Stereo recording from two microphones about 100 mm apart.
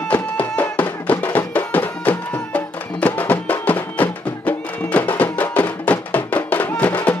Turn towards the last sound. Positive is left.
turn(degrees=15)  # may be behind; listen again after turning